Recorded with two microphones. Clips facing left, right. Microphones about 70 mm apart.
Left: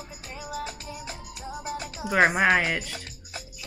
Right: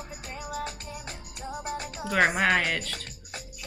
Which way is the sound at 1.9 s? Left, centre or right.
Centre.